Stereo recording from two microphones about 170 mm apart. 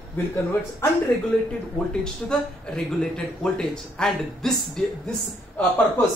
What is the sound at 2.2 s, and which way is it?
A man's voice, 5° left (ahead or behind).